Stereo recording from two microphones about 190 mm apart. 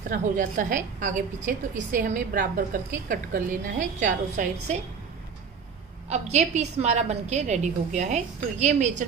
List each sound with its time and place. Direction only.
0.1 s a woman's voice: 45° right (ahead or behind)
6.0 s a woman's voice: 35° right (ahead or behind)